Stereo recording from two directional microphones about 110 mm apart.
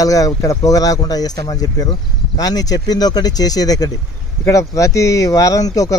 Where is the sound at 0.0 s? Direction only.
30° left (ahead or behind).